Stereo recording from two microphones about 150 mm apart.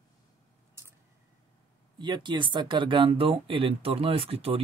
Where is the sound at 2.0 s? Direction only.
30° right (ahead or behind).